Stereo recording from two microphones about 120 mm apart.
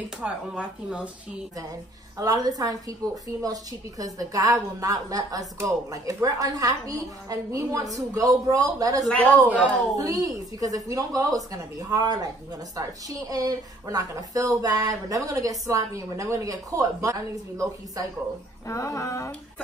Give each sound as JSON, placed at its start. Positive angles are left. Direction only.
{"t": 0.2, "sound": "speech", "side_deg": -10}
{"t": 2.1, "sound": "a woman's voice", "side_deg": -30}
{"t": 4.0, "sound": "speech", "side_deg": -30}
{"t": 9.1, "sound": "speech", "side_deg": 15}
{"t": 9.9, "sound": "speech", "side_deg": -30}
{"t": 18.7, "sound": "a sound", "side_deg": 25}